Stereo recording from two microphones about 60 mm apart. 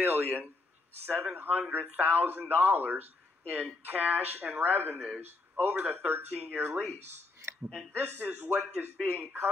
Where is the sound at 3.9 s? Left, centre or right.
Right.